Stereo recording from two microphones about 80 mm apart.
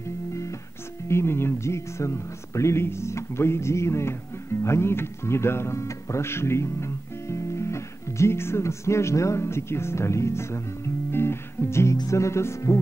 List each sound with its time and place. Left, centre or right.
1.0 s speech: left
11.1 s music: left
12.1 s speech: left